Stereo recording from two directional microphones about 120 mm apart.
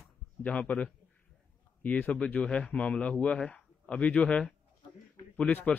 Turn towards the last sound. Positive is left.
turn(degrees=10)  # may be behind; listen again after turning